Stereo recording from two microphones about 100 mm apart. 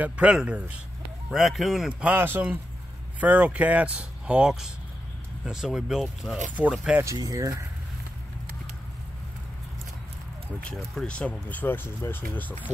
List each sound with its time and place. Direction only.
0.0 s speech: 10° right (ahead or behind)
1.3 s speech: centre (ahead or behind)
2.1 s speech: 20° right (ahead or behind)
7.2 s speech: 35° right (ahead or behind)
10.6 s speech: 10° left (ahead or behind)